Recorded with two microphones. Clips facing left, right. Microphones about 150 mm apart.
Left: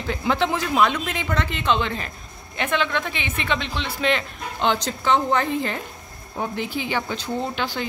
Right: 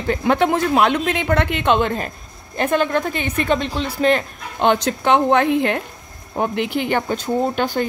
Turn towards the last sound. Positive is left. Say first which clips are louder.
# right 7 dB
turn(degrees=-50)  # may be behind; listen again after turning